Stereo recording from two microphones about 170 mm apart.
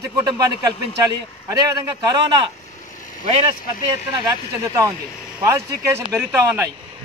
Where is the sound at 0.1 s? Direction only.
20° right (ahead or behind).